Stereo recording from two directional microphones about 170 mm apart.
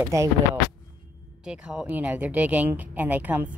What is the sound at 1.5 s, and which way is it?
Speech, 5° right (ahead or behind).